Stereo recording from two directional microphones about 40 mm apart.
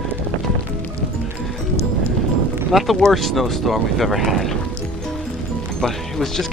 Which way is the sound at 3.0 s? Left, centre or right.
Centre.